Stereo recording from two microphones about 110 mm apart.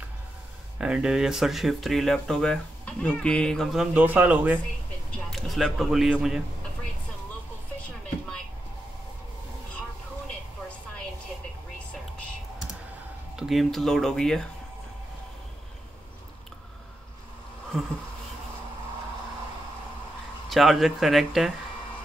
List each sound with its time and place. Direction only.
0.7 s speech: 5° right (ahead or behind)
3.8 s speech: 15° right (ahead or behind)
5.1 s speech: centre (ahead or behind)
13.4 s speech: centre (ahead or behind)
20.4 s speech: centre (ahead or behind)